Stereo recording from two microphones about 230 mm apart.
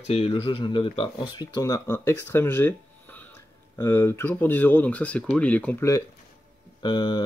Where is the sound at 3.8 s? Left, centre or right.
Centre.